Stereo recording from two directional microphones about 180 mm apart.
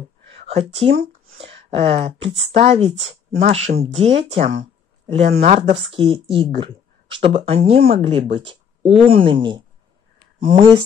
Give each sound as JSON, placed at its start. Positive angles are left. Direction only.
{"t": 0.5, "sound": "speech", "side_deg": -35}